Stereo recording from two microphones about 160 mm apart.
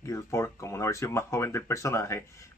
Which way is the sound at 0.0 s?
15° left (ahead or behind).